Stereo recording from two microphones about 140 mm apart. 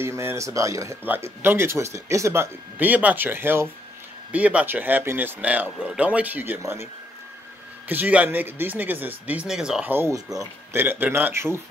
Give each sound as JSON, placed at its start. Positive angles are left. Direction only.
{"t": 0.0, "sound": "speech", "side_deg": -20}
{"t": 7.9, "sound": "speech", "side_deg": -10}